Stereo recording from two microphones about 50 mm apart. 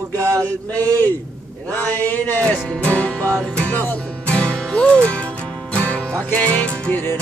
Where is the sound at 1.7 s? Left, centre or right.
Left.